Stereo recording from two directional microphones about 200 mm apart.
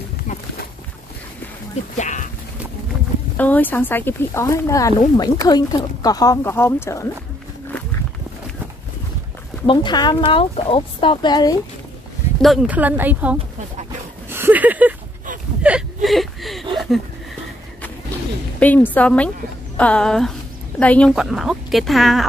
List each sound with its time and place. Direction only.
2.0 s speech: 35° left (ahead or behind)
3.3 s speech: 10° left (ahead or behind)
9.7 s speech: 20° left (ahead or behind)
12.4 s speech: 5° right (ahead or behind)
14.3 s a sound: 10° right (ahead or behind)
15.6 s whimper: 5° right (ahead or behind)
18.6 s a woman's voice: 10° left (ahead or behind)